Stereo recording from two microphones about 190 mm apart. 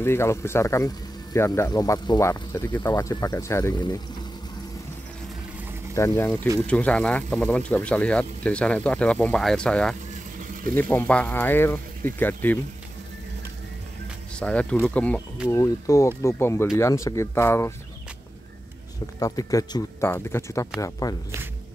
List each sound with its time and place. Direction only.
0.0 s speech: 15° left (ahead or behind)
5.9 s speech: 15° left (ahead or behind)
14.4 s speech: 5° left (ahead or behind)
19.1 s speech: 20° left (ahead or behind)